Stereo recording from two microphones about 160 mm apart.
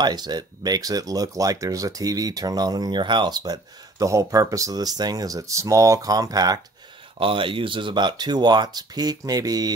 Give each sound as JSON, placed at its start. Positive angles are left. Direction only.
{"t": 0.0, "sound": "speech", "side_deg": -25}